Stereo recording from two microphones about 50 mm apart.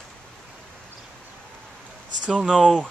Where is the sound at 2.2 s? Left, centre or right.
Centre.